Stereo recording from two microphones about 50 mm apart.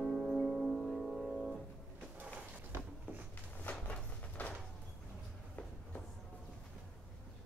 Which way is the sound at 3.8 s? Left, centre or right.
Left.